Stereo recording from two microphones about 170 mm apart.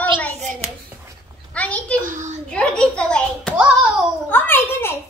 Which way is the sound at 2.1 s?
45° right (ahead or behind).